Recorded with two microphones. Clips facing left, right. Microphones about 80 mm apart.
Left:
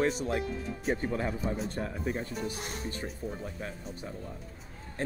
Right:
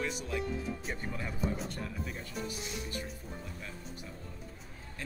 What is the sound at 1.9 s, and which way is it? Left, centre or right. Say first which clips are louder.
Speech: left 6 dB; left.